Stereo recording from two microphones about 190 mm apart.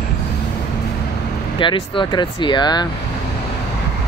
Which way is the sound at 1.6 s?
25° left (ahead or behind).